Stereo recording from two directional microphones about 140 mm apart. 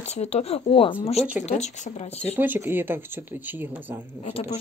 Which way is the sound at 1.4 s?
55° left (ahead or behind).